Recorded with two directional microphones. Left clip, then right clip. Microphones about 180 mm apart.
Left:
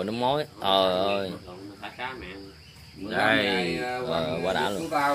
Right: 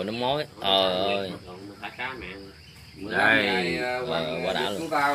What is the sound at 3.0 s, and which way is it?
Speech, 30° left (ahead or behind).